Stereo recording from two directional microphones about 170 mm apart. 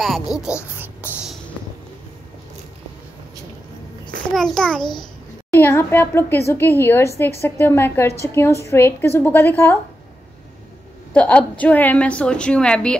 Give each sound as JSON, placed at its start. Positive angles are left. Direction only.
{"t": 0.0, "sound": "a sound", "side_deg": 0}
{"t": 4.3, "sound": "a child's voice", "side_deg": 0}
{"t": 11.1, "sound": "a woman's voice", "side_deg": 10}